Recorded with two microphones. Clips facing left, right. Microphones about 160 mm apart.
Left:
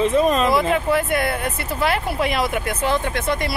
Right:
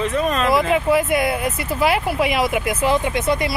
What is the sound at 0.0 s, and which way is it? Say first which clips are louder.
Speech: left 4 dB; 30° left (ahead or behind).